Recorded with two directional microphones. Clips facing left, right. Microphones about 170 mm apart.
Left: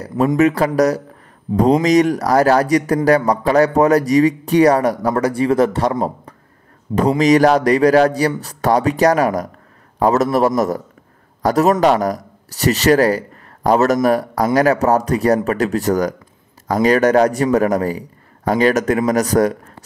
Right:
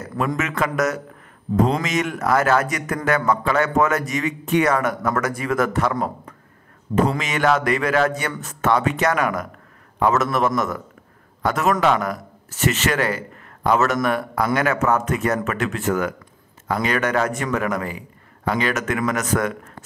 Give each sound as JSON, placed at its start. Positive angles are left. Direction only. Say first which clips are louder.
{"t": 0.1, "sound": "speech", "louder": "left 7 dB", "side_deg": 25}
{"t": 0.4, "sound": "speech", "louder": "left 10 dB", "side_deg": 35}